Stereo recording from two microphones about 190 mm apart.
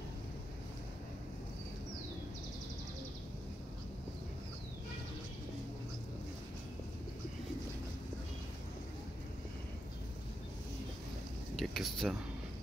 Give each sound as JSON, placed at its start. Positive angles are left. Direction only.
{"t": 11.5, "sound": "speech", "side_deg": 0}